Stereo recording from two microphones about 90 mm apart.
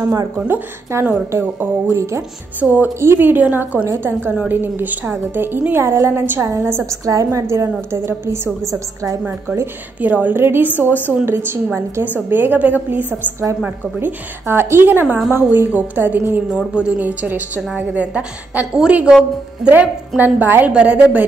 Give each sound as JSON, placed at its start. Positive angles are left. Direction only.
{"t": 0.0, "sound": "a woman's voice", "side_deg": -40}
{"t": 0.5, "sound": "a woman's voice", "side_deg": -20}
{"t": 2.6, "sound": "a woman's voice", "side_deg": -15}
{"t": 9.9, "sound": "a woman's voice", "side_deg": -20}
{"t": 16.4, "sound": "a woman's voice", "side_deg": -10}